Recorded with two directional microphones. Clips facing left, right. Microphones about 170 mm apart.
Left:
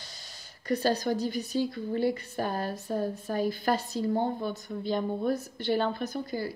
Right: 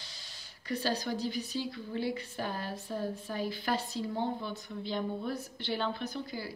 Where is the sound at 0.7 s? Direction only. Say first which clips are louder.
Left 6 dB; 45° left (ahead or behind).